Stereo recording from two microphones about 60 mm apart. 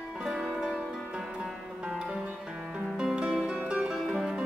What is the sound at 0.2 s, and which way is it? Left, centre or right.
Music, centre.